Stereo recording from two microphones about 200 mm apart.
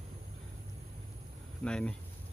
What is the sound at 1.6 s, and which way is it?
Speech, 5° left (ahead or behind).